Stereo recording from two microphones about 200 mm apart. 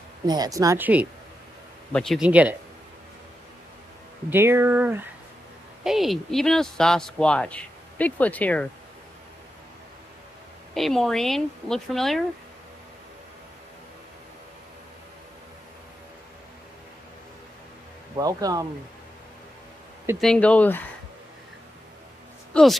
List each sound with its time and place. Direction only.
0.3 s speech: 20° right (ahead or behind)
1.9 s a man's voice: 5° left (ahead or behind)
4.3 s a man's voice: 10° right (ahead or behind); by 8.6 s 5° left (ahead or behind)
10.7 s a man's voice: centre (ahead or behind)
18.1 s speech: 20° right (ahead or behind)
20.2 s speech: 5° left (ahead or behind)
22.5 s speech: centre (ahead or behind)